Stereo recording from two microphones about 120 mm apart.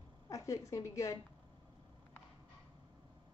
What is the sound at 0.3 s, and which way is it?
Speech, 25° left (ahead or behind).